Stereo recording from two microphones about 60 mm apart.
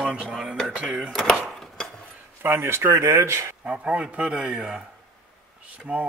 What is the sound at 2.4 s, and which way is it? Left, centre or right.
Speech, right.